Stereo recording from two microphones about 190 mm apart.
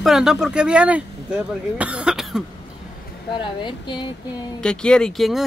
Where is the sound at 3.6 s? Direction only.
25° left (ahead or behind).